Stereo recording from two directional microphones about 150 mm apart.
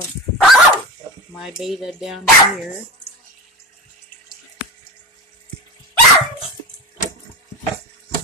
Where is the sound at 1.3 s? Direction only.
Centre (ahead or behind).